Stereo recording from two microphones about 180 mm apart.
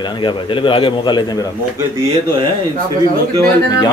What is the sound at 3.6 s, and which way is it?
Speech, 20° left (ahead or behind).